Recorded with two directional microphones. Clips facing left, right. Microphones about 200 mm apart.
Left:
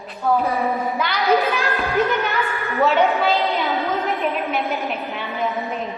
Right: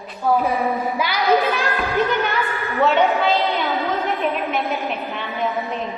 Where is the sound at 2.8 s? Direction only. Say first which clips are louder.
Even; centre (ahead or behind).